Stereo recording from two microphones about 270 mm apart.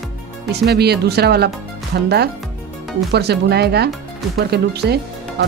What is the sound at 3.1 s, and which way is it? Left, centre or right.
Speech, right.